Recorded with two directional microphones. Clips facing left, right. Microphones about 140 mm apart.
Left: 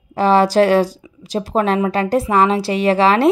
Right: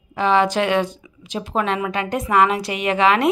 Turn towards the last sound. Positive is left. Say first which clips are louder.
# left 4 dB
turn(degrees=35)  # may be behind; listen again after turning